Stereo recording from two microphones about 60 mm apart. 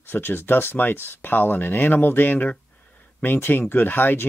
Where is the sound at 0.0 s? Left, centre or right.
Left.